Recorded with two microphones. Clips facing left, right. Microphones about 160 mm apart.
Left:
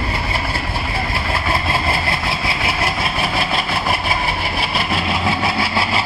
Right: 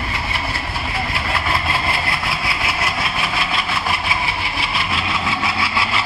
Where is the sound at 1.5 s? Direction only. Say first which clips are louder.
Left 3 dB; 30° left (ahead or behind).